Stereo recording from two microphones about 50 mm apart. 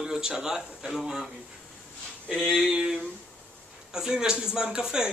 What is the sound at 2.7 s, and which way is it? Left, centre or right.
Speech, centre.